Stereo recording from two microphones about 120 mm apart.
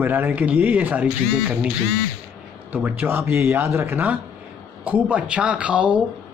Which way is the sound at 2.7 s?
15° right (ahead or behind).